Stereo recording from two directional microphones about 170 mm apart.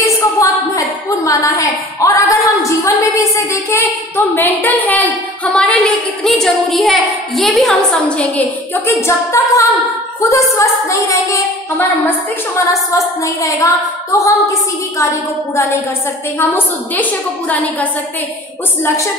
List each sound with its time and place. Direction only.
0.0 s a woman's voice: 20° left (ahead or behind); by 7.7 s centre (ahead or behind)
8.2 s a woman's voice: 10° left (ahead or behind)
16.3 s a woman's voice: 10° left (ahead or behind)